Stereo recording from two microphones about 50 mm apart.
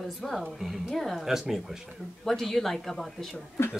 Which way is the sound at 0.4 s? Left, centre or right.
Centre.